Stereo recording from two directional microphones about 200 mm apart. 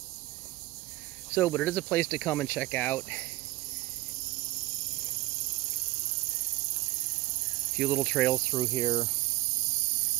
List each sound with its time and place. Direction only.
1.3 s speech: 10° left (ahead or behind)
7.8 s speech: 5° left (ahead or behind)
8.3 s speech: 15° left (ahead or behind)